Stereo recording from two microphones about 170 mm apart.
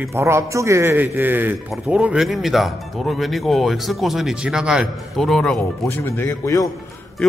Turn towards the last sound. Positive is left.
turn(degrees=20)  # may be behind; listen again after turning